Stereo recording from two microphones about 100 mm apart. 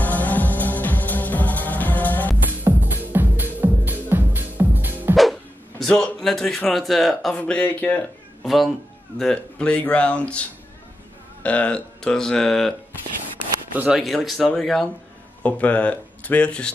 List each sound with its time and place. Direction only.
0.0 s music: 15° left (ahead or behind)
2.6 s music: 20° right (ahead or behind)
5.1 s dog: centre (ahead or behind)
7.3 s speech: 15° left (ahead or behind)
8.5 s speech: centre (ahead or behind)
11.4 s speech: 15° left (ahead or behind)
13.7 s speech: 5° right (ahead or behind); by 16.7 s 10° left (ahead or behind)